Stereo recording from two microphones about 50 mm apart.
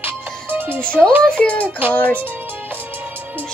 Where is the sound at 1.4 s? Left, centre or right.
Left.